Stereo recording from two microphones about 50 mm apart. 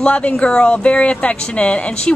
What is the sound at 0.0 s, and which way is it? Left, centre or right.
A woman's voice, left.